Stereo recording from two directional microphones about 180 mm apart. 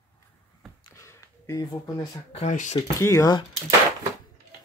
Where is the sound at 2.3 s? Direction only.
40° left (ahead or behind).